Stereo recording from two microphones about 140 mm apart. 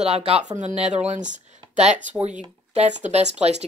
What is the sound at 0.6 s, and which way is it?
Speech, 55° right (ahead or behind).